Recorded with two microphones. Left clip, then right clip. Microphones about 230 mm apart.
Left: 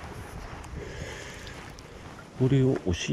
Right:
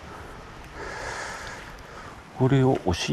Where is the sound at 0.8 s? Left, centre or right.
Right.